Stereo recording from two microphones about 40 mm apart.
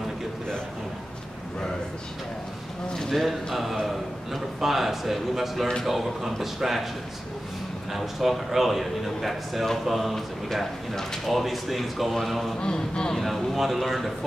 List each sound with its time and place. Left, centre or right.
3.0 s a man's voice: centre
7.9 s a man's voice: centre
12.5 s speech: left
13.1 s a man's voice: centre